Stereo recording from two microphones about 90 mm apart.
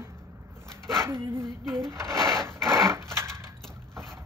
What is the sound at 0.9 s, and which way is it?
Dog, 30° right (ahead or behind).